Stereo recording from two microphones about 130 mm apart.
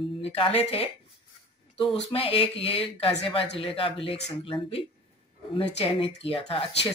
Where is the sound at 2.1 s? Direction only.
45° left (ahead or behind).